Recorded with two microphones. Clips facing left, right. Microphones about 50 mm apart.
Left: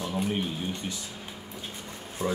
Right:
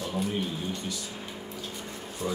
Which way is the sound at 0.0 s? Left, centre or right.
Centre.